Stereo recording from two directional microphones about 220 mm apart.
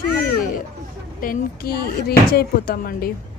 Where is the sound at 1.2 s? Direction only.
40° left (ahead or behind).